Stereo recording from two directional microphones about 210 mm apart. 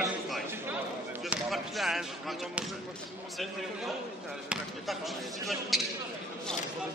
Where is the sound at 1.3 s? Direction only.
Centre (ahead or behind).